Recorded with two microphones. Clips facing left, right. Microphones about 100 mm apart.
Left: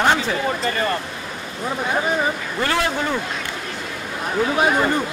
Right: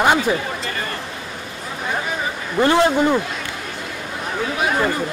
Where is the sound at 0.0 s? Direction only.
10° right (ahead or behind).